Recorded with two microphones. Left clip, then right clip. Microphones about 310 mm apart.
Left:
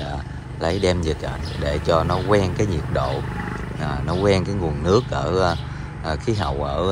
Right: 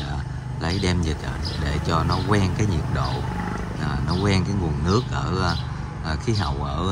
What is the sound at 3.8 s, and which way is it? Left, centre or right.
Speech, centre.